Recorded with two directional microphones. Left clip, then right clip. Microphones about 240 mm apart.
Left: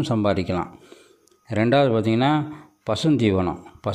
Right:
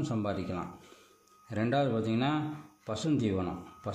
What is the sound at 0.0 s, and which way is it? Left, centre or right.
Speech, left.